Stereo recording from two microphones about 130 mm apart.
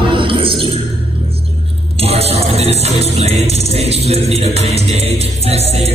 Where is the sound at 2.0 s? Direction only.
50° right (ahead or behind).